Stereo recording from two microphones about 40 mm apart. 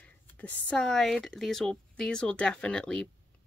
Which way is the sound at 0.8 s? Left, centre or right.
Centre.